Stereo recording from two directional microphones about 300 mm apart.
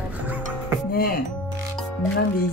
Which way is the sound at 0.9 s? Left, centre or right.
Left.